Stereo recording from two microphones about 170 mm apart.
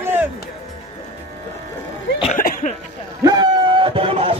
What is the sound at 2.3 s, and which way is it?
Cough, 50° left (ahead or behind).